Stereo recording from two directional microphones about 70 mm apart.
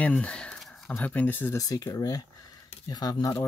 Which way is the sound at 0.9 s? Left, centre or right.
Left.